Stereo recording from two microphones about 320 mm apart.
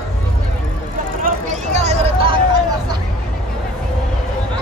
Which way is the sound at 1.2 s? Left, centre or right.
Right.